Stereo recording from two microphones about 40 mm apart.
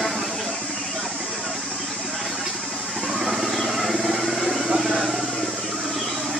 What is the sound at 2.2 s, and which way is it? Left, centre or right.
Vehicle, centre.